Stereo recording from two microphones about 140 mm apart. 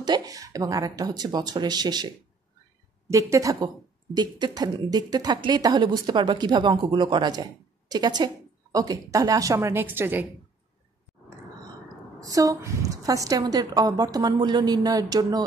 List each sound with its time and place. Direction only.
0.0 s a woman's voice: 30° right (ahead or behind)
3.1 s a woman's voice: 20° right (ahead or behind)
12.2 s a woman's voice: 25° right (ahead or behind)